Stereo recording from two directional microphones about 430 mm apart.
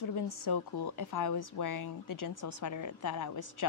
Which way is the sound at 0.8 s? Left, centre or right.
Left.